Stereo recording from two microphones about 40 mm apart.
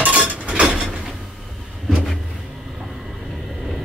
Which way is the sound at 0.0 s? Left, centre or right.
Right.